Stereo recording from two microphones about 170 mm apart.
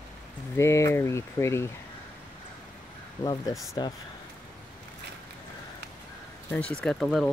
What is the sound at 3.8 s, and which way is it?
Speech, 25° left (ahead or behind).